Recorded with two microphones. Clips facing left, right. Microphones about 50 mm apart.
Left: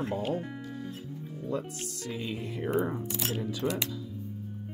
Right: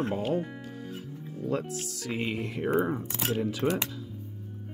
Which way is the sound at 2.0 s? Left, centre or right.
Right.